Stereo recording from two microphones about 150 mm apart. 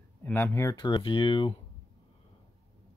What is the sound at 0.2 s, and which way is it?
Speech, 15° left (ahead or behind).